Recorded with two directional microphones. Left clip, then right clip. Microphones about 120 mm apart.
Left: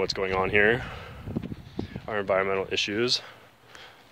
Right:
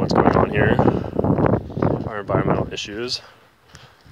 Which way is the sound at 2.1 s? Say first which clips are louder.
Right 3 dB; 35° left (ahead or behind).